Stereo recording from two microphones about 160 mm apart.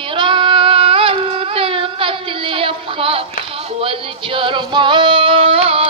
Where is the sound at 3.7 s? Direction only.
35° right (ahead or behind).